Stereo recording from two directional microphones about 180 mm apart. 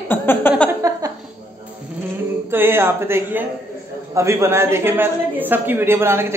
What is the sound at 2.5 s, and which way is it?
A man's voice, 10° right (ahead or behind).